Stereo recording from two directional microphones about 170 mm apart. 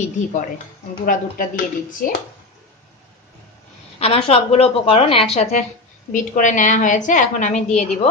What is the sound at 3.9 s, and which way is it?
A woman's voice, 35° left (ahead or behind).